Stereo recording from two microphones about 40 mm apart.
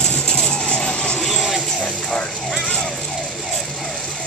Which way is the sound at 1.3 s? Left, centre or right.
Centre.